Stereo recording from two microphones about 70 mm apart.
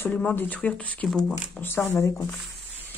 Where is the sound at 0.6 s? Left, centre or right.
Centre.